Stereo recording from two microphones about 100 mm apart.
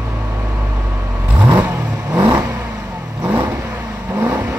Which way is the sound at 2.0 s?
30° right (ahead or behind).